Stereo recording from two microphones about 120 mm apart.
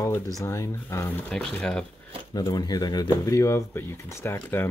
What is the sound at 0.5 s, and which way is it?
Speech, 25° left (ahead or behind).